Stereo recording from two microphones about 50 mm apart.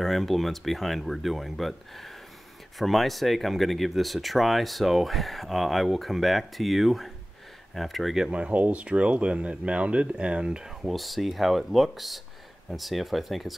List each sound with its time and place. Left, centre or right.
0.0 s speech: centre
8.2 s speech: right
10.8 s speech: centre